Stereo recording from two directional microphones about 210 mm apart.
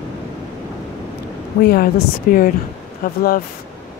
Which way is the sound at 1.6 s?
45° left (ahead or behind).